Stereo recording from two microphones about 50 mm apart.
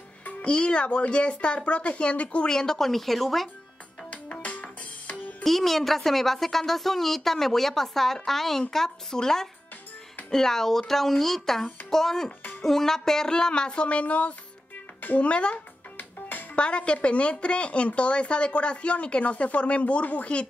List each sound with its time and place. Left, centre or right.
0.4 s a woman's voice: centre
4.1 s music: left
5.4 s a woman's voice: centre; by 15.6 s left
16.0 s music: left
16.5 s a woman's voice: left